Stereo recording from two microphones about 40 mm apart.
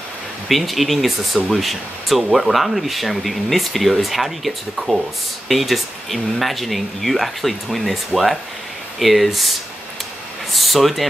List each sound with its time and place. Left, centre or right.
0.5 s speech: centre
10.5 s speech: centre